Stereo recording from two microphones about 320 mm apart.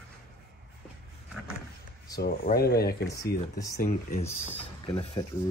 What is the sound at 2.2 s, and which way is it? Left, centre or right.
Speech, left.